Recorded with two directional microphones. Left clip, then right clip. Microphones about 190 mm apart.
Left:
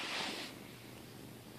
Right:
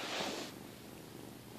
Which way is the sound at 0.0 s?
45° right (ahead or behind).